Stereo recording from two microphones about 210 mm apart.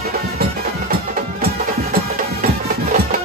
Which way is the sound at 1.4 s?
45° right (ahead or behind).